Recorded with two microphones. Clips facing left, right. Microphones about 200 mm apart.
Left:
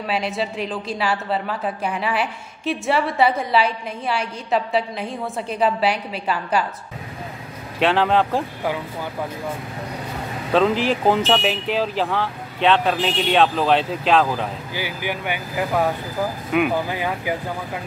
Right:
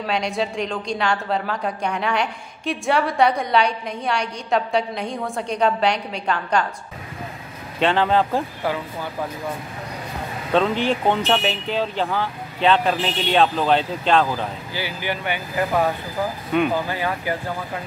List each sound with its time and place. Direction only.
0.0 s a woman's voice: 5° left (ahead or behind)
7.8 s a woman's voice: centre (ahead or behind)
10.5 s a woman's voice: centre (ahead or behind)
14.7 s speech: 15° left (ahead or behind)
16.5 s speech: 10° left (ahead or behind)